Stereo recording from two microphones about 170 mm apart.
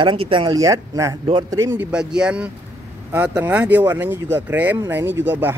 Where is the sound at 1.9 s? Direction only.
5° right (ahead or behind).